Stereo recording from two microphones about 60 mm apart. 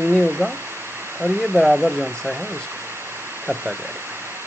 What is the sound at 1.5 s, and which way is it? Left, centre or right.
Speech, centre.